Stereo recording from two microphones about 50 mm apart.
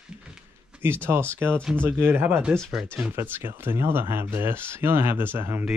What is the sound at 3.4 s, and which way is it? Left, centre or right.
Speech, right.